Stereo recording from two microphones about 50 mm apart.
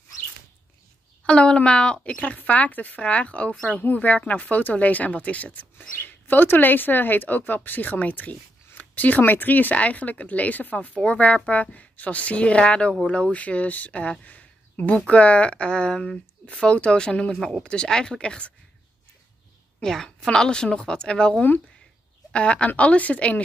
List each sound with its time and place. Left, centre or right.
1.2 s speech: left
5.9 s speech: left
14.2 s a sound: left
15.0 s speech: left
19.8 s a woman's voice: centre; by 23.4 s left